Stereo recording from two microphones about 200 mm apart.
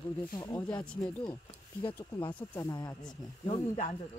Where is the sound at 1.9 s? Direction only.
20° left (ahead or behind).